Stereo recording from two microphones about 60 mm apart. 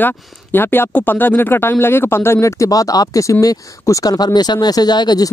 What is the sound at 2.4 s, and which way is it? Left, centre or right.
Speech, left.